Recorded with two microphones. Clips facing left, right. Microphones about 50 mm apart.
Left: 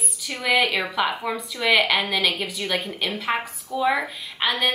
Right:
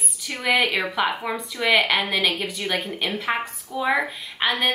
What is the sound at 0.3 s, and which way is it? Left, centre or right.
Speech, centre.